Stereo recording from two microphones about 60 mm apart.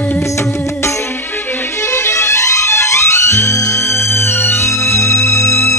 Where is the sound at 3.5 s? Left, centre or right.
Left.